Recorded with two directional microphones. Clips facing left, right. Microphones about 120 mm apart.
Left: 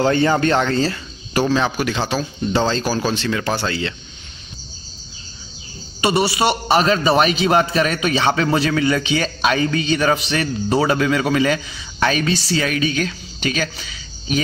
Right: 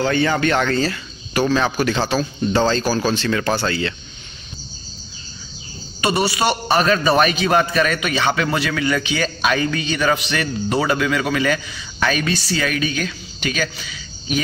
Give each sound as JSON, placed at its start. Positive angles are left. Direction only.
{"t": 0.0, "sound": "speech", "side_deg": 35}
{"t": 0.6, "sound": "a man's voice", "side_deg": 25}
{"t": 5.9, "sound": "a man's voice", "side_deg": 25}